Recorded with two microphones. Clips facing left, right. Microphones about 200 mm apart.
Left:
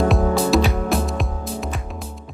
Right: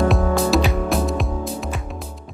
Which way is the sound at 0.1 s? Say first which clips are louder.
Left 1 dB; centre (ahead or behind).